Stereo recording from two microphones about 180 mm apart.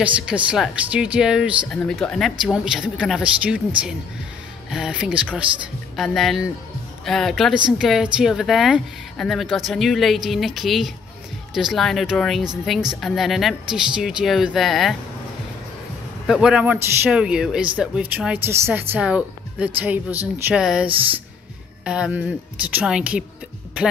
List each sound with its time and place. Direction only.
0.0 s speech: 5° right (ahead or behind)
16.3 s speech: 5° right (ahead or behind)